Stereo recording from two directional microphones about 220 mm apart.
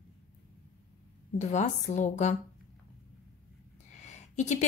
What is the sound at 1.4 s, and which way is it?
Speech, 30° left (ahead or behind).